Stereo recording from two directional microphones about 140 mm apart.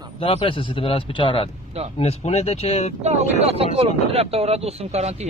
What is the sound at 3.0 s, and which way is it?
Speech, 50° right (ahead or behind).